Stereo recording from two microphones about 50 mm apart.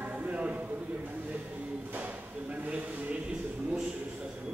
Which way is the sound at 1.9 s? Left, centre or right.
Right.